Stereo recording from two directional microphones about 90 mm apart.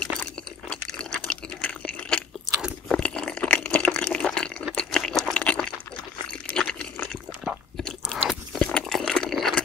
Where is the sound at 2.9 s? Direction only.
10° left (ahead or behind).